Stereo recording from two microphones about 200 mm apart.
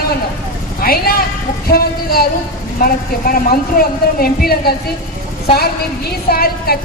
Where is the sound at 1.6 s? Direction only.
50° left (ahead or behind).